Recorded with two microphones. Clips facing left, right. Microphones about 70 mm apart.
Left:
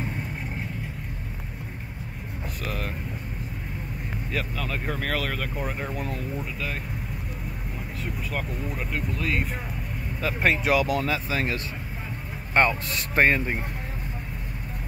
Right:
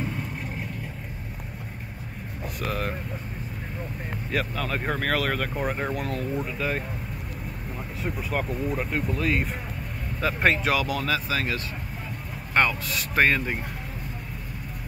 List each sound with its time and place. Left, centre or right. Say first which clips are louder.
2.6 s speech: right 4 dB; centre
4.3 s speech: right 3 dB; centre
5.9 s speech: right 2 dB; centre
6.3 s speech: right 4 dB; centre
8.0 s speech: right 4 dB; centre
10.9 s speech: left 1 dB; left